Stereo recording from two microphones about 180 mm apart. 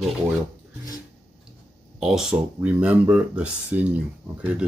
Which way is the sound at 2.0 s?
5° right (ahead or behind).